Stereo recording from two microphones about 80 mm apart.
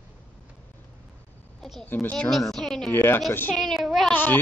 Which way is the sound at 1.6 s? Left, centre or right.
Centre.